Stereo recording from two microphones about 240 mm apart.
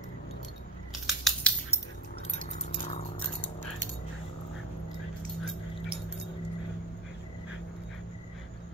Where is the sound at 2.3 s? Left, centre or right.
Left.